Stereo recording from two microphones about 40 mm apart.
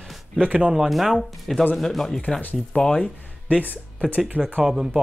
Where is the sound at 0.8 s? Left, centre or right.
Centre.